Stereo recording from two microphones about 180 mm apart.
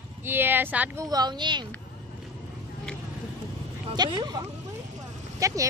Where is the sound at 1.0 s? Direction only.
20° right (ahead or behind).